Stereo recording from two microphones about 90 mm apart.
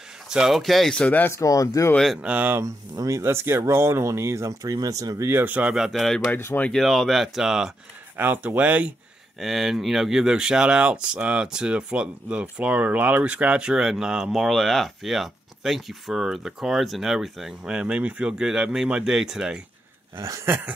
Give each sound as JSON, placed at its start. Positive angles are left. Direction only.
{"t": 0.3, "sound": "speech", "side_deg": -5}
{"t": 1.3, "sound": "speech", "side_deg": 40}
{"t": 2.2, "sound": "speech", "side_deg": -15}
{"t": 2.6, "sound": "speech", "side_deg": -40}
{"t": 5.3, "sound": "speech", "side_deg": -20}
{"t": 5.8, "sound": "speech", "side_deg": 0}
{"t": 6.3, "sound": "speech", "side_deg": 20}
{"t": 6.7, "sound": "speech", "side_deg": 0}
{"t": 8.2, "sound": "speech", "side_deg": -20}
{"t": 9.4, "sound": "speech", "side_deg": 0}
{"t": 20.2, "sound": "speech", "side_deg": -35}
{"t": 20.4, "sound": "speech", "side_deg": -20}